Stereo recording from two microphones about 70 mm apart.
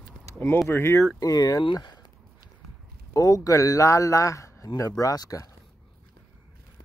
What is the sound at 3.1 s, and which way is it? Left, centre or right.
Speech, left.